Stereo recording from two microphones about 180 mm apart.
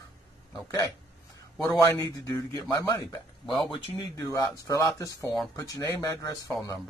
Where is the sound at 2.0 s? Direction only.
20° left (ahead or behind).